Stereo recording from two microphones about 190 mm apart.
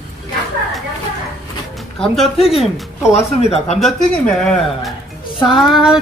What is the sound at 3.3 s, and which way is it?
Speech, 35° left (ahead or behind).